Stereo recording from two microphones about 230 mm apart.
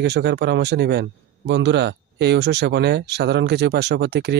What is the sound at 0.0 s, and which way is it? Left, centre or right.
A man's voice, right.